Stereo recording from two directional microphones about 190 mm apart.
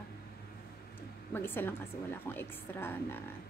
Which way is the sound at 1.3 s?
10° left (ahead or behind).